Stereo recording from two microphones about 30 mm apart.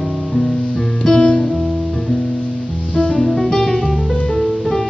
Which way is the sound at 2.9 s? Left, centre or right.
Left.